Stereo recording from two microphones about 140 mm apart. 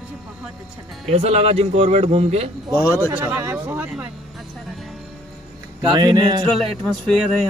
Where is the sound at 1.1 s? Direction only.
50° right (ahead or behind).